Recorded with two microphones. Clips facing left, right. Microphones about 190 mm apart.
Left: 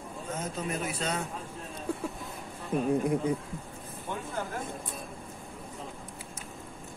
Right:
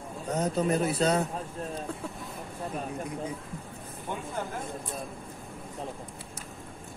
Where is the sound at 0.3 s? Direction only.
35° right (ahead or behind).